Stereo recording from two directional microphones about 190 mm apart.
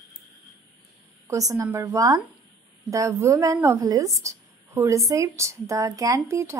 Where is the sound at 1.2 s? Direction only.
15° right (ahead or behind).